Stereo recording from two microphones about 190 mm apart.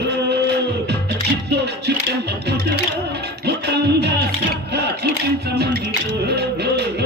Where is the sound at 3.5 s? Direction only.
60° right (ahead or behind).